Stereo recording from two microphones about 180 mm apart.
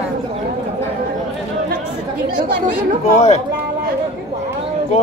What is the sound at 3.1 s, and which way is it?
Speech, 40° left (ahead or behind).